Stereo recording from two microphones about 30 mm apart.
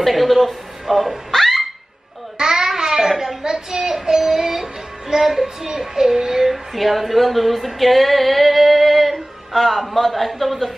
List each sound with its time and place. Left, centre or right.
0.0 s speech: centre
1.3 s a sound: centre
2.3 s a sound: right
3.4 s child singing: right
3.9 s music: centre
6.5 s female singing: centre